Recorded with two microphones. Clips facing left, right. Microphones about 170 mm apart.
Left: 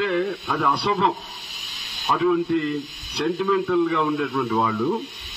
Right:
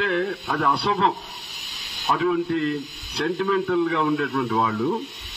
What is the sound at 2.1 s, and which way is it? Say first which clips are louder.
A man's voice: left 2 dB; centre (ahead or behind).